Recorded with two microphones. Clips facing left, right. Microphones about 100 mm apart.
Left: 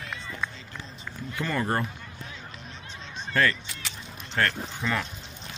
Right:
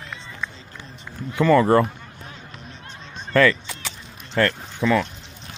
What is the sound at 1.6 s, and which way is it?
Speech, 90° right.